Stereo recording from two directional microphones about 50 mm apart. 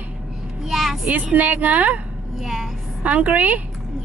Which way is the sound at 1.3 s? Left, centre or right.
Right.